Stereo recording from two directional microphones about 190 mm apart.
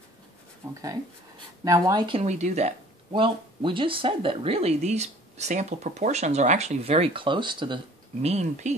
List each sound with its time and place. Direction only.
1.6 s speech: 20° right (ahead or behind); by 8.7 s 35° right (ahead or behind)